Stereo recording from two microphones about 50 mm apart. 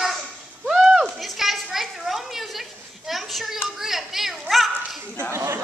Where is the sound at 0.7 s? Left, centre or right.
Centre.